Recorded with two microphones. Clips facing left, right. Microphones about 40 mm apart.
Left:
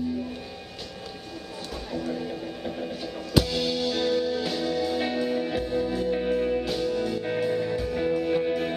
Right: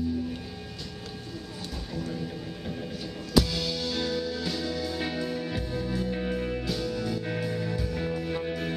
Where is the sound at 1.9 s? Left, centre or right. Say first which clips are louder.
Left 4 dB; centre.